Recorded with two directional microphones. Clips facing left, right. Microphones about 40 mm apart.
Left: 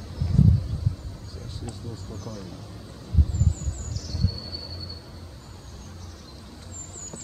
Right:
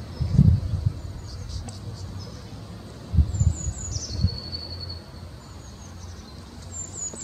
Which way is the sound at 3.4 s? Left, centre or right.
Left.